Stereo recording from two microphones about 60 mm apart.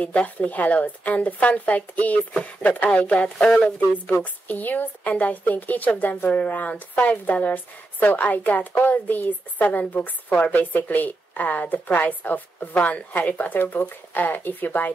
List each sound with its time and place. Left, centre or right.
0.0 s a woman's voice: left